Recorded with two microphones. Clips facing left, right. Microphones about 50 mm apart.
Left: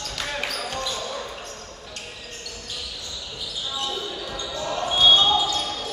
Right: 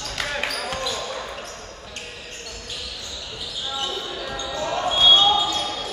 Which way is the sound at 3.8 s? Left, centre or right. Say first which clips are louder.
Right 1 dB; centre.